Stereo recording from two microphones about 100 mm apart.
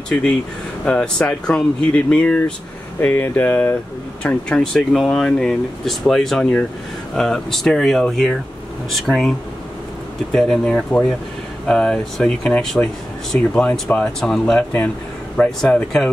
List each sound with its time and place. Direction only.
0.8 s speech: 10° left (ahead or behind)
10.3 s speech: 5° left (ahead or behind)